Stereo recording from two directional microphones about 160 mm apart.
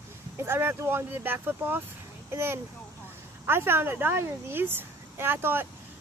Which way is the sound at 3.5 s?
15° right (ahead or behind).